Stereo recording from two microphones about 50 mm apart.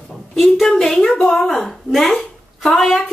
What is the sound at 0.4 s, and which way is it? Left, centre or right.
A woman's voice, centre.